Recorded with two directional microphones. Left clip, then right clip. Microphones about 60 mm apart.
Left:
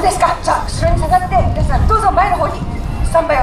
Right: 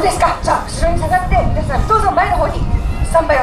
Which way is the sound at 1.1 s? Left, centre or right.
Centre.